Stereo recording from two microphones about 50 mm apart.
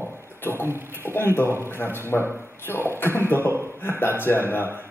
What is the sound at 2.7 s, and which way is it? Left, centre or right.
Speech, right.